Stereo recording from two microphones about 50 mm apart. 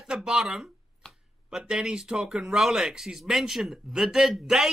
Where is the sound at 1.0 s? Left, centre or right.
Centre.